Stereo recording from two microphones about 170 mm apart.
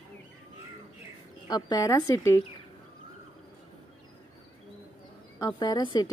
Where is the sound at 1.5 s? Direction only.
25° left (ahead or behind).